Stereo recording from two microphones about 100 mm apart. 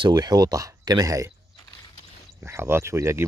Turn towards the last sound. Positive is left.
turn(degrees=-25)  # may be behind; listen again after turning